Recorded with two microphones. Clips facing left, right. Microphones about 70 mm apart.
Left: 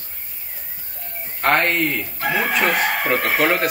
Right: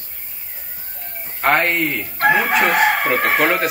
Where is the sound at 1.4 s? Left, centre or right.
Centre.